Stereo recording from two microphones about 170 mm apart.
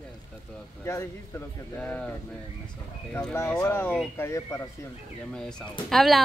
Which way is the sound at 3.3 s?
15° left (ahead or behind).